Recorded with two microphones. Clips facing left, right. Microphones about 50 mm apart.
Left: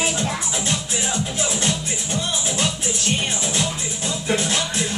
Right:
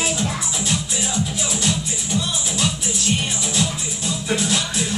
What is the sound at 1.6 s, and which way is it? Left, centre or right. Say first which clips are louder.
Music: even; left.